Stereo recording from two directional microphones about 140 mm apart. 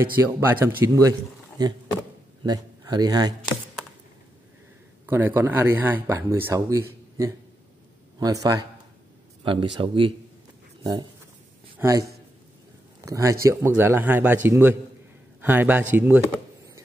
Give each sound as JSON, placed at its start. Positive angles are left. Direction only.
{"t": 0.2, "sound": "a man's voice", "side_deg": -20}
{"t": 5.0, "sound": "a man's voice", "side_deg": -15}
{"t": 9.4, "sound": "a man's voice", "side_deg": -35}